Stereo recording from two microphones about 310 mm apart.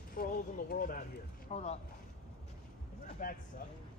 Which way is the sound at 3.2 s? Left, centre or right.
Left.